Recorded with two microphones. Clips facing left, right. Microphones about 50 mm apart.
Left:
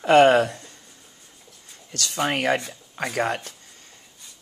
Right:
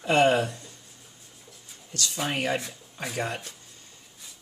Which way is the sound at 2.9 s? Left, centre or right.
Left.